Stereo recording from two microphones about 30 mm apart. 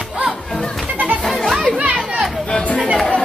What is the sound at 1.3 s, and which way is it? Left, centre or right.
Children playing, centre.